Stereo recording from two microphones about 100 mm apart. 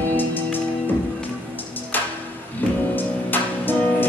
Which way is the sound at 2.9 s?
20° left (ahead or behind).